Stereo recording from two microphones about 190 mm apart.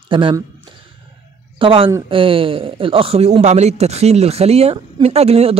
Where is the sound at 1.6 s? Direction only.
30° right (ahead or behind).